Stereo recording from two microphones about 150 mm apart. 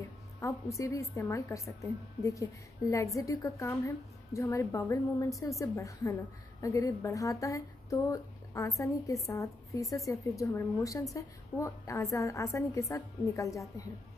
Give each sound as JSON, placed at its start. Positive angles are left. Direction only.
{"t": 0.4, "sound": "speech", "side_deg": 20}